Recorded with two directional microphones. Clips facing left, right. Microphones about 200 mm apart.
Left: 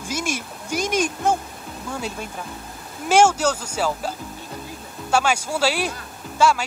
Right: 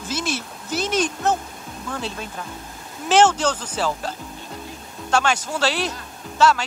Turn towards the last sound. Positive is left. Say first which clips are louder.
# right 1 dB
turn(degrees=10)  # may be behind; listen again after turning